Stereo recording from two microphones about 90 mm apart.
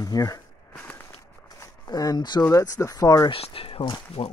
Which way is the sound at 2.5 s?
35° left (ahead or behind).